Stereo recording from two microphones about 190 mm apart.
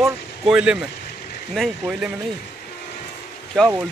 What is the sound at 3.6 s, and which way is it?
Speech, centre (ahead or behind).